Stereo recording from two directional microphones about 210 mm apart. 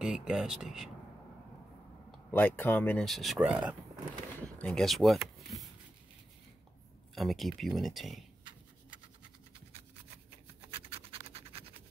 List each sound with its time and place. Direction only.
0.0 s speech: 5° right (ahead or behind)
2.0 s speech: 5° left (ahead or behind)
7.2 s speech: centre (ahead or behind)
10.7 s scratch: 25° right (ahead or behind)